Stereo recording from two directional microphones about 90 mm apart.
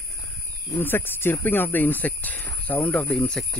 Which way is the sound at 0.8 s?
25° left (ahead or behind).